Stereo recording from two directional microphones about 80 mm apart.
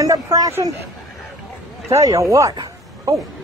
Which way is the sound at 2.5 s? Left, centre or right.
Right.